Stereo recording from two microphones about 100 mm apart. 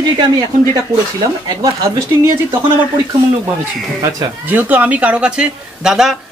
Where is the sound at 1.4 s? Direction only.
35° right (ahead or behind).